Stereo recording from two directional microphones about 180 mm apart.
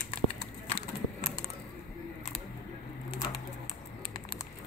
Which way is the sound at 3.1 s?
25° left (ahead or behind).